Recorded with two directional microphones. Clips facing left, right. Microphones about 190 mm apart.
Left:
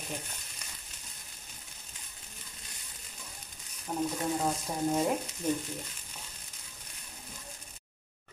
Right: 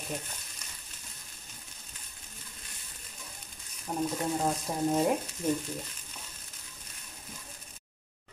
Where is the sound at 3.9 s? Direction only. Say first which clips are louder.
Right 1 dB; 10° right (ahead or behind).